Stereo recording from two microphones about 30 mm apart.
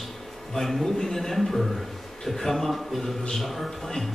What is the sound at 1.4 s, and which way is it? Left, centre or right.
A man's voice, centre.